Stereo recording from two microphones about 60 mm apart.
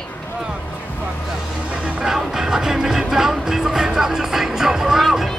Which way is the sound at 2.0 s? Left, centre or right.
Centre.